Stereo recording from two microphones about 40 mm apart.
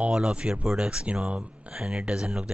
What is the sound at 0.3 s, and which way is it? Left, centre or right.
Speech, right.